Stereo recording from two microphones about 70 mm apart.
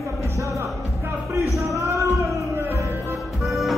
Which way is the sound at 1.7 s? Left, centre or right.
Right.